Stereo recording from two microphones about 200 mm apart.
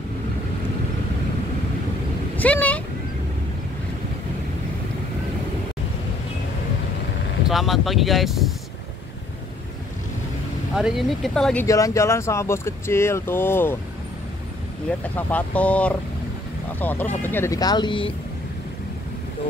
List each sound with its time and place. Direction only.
2.3 s vehicle: 5° left (ahead or behind)
7.4 s speech: centre (ahead or behind)
10.7 s speech: centre (ahead or behind)
11.6 s speech: 15° left (ahead or behind)
15.1 s speech: 10° left (ahead or behind); by 18.1 s 25° left (ahead or behind)